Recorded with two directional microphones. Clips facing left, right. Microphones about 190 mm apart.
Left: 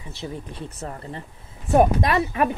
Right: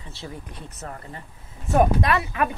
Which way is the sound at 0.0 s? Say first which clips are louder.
Left 4 dB; 20° left (ahead or behind).